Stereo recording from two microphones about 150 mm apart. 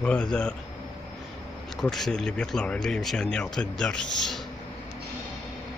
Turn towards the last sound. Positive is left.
turn(degrees=0)  # may be behind; listen again after turning